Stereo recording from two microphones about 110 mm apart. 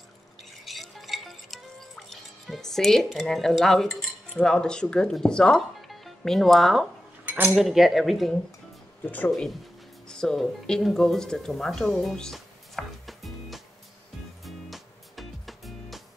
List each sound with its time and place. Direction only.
0.4 s music: centre (ahead or behind)
4.4 s speech: 5° left (ahead or behind)
7.2 s cutlery: 15° right (ahead or behind)
7.5 s speech: centre (ahead or behind)
10.0 s speech: 5° left (ahead or behind)
14.4 s music: centre (ahead or behind)